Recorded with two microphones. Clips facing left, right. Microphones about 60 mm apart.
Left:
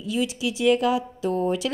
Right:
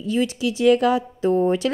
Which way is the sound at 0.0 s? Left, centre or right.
Right.